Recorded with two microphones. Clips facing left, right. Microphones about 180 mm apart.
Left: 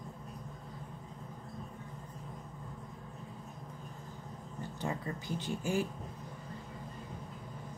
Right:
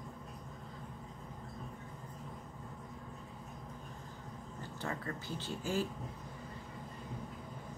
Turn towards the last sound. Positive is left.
turn(degrees=15)  # may be behind; listen again after turning